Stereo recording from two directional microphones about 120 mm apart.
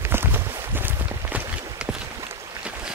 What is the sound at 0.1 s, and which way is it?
Walk, 20° right (ahead or behind).